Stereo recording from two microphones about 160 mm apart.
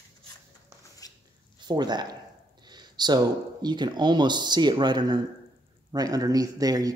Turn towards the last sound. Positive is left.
turn(degrees=-25)  # may be behind; listen again after turning